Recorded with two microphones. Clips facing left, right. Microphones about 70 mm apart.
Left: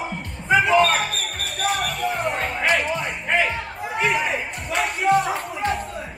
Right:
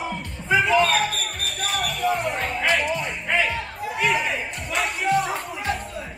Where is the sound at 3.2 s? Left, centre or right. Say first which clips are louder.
Left 2 dB; left.